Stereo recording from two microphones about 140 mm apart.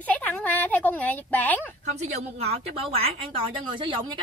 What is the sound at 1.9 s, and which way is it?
A woman's voice, 50° right (ahead or behind).